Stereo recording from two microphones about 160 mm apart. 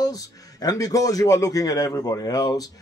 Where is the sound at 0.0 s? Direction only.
20° left (ahead or behind).